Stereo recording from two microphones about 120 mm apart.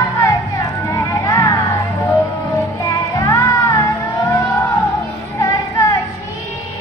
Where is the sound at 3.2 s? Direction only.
25° left (ahead or behind).